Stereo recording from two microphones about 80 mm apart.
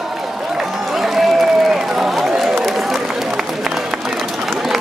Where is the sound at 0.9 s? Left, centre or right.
Centre.